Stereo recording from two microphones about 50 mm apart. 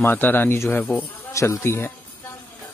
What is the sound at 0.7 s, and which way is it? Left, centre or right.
Speech, left.